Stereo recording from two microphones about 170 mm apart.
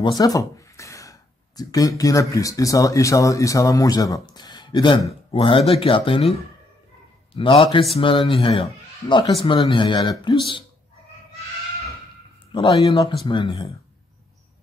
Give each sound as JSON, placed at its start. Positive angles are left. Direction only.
{"t": 0.0, "sound": "a sound", "side_deg": 20}
{"t": 1.6, "sound": "speech", "side_deg": 20}
{"t": 7.3, "sound": "speech", "side_deg": 30}
{"t": 8.6, "sound": "a man's voice", "side_deg": 20}
{"t": 12.5, "sound": "speech", "side_deg": 35}